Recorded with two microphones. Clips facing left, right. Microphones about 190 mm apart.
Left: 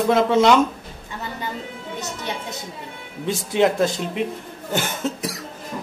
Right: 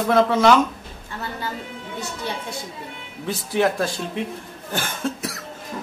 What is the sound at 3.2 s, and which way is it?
Speech, 20° left (ahead or behind).